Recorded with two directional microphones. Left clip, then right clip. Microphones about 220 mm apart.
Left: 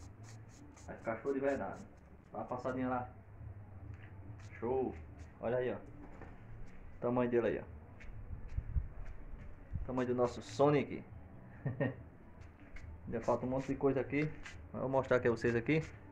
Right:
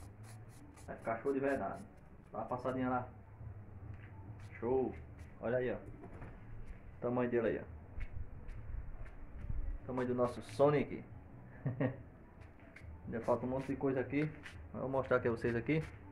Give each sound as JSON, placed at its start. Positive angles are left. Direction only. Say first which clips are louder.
{"t": 1.0, "sound": "a man's voice", "louder": "even", "side_deg": 5}
{"t": 4.6, "sound": "speech", "louder": "right 1 dB", "side_deg": 10}
{"t": 7.0, "sound": "a man's voice", "louder": "left 2 dB", "side_deg": 25}
{"t": 9.9, "sound": "a man's voice", "louder": "left 1 dB", "side_deg": 20}
{"t": 13.1, "sound": "a man's voice", "louder": "left 1 dB", "side_deg": 25}